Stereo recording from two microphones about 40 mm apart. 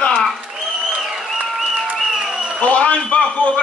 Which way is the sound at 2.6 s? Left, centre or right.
Left.